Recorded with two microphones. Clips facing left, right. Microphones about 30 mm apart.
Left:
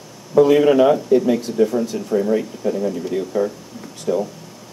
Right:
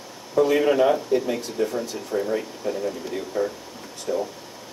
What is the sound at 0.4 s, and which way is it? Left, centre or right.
Speech, centre.